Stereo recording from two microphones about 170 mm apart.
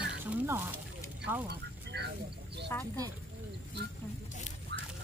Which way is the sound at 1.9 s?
80° right.